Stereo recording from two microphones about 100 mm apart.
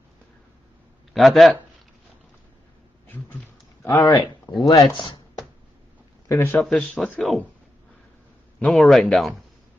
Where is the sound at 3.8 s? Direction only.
35° left (ahead or behind).